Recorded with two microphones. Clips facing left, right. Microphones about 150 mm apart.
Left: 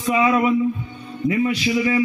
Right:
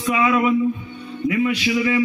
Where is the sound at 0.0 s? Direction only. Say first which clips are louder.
Left 1 dB; 35° left (ahead or behind).